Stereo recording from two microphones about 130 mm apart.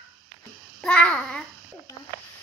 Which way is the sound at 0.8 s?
10° left (ahead or behind).